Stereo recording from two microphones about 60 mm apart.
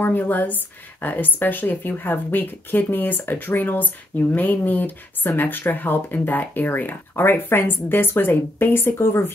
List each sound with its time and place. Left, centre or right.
0.0 s speech: left